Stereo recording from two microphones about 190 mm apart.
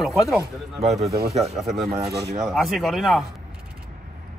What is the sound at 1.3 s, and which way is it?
Speech, 35° right (ahead or behind).